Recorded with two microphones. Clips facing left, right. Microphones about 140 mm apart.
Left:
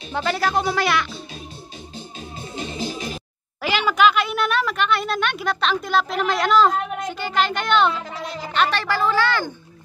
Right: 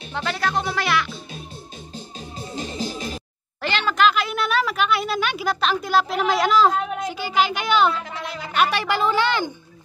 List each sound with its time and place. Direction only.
0.1 s speech: 5° left (ahead or behind)
2.1 s music: 35° right (ahead or behind)
3.6 s speech: 5° left (ahead or behind)
8.0 s speech: 35° left (ahead or behind)
8.5 s speech: 10° right (ahead or behind)